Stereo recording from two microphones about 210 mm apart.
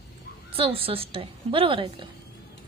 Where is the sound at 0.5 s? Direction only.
25° right (ahead or behind).